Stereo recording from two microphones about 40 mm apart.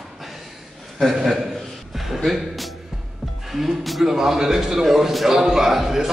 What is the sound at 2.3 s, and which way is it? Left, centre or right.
Music, centre.